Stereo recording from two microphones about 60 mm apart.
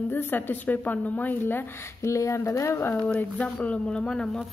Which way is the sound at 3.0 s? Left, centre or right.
Left.